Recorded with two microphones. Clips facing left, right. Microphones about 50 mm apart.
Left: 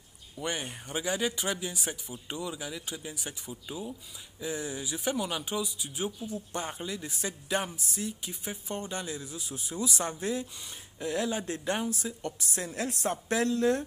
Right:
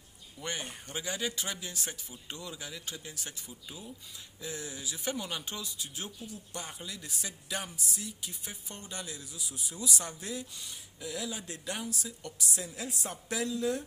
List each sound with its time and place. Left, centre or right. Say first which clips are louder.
0.4 s speech: left 4 dB; centre
3.4 s speech: left 7 dB; left
5.1 s speech: left 6 dB; centre
6.2 s a woman's voice: left 7 dB; left